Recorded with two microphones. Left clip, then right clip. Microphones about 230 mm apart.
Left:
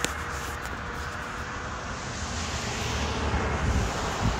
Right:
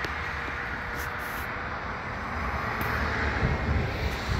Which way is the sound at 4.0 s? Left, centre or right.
Left.